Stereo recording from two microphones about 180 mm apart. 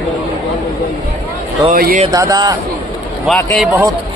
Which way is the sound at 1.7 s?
50° right (ahead or behind).